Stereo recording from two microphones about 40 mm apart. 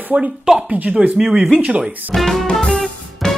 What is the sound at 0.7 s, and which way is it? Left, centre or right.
Speech, right.